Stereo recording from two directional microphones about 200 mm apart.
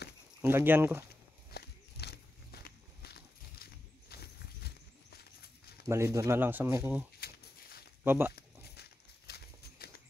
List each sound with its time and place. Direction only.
0.4 s speech: 10° right (ahead or behind)
1.5 s walk: 55° left (ahead or behind)
5.9 s speech: 15° right (ahead or behind)
7.2 s a sound: 50° left (ahead or behind)
8.0 s speech: 10° right (ahead or behind)
8.3 s a sound: 50° left (ahead or behind)